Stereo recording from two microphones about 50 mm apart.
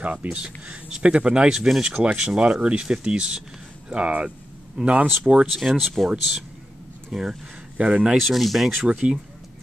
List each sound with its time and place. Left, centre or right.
0.0 s speech: right
5.5 s speech: centre
7.1 s speech: centre
8.2 s speech: centre
8.8 s speech: right